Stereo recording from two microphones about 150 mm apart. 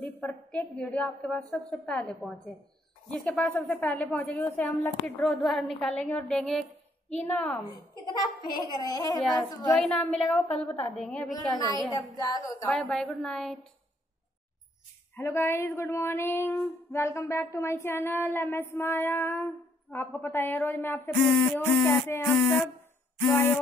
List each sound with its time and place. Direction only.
0.0 s a woman's voice: 5° left (ahead or behind)
7.1 s female singing: 10° left (ahead or behind)
8.0 s a woman's voice: 30° left (ahead or behind)
9.8 s a woman's voice: centre (ahead or behind)
10.6 s female singing: 5° left (ahead or behind)
11.5 s a woman's voice: 25° left (ahead or behind)
12.6 s a woman's voice: 5° left (ahead or behind)
15.1 s female singing: 15° left (ahead or behind)